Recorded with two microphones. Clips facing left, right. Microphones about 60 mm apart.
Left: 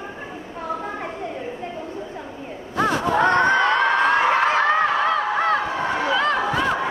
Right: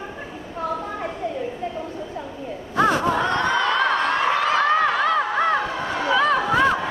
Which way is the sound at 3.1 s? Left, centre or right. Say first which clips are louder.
Left 4 dB; left.